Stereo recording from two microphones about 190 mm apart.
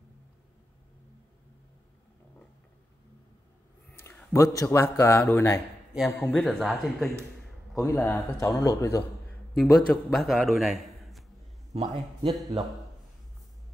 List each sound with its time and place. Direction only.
4.0 s a man's voice: 15° left (ahead or behind)
5.9 s a man's voice: centre (ahead or behind)
7.7 s speech: 10° left (ahead or behind)
9.6 s a man's voice: centre (ahead or behind)
11.7 s speech: 35° right (ahead or behind)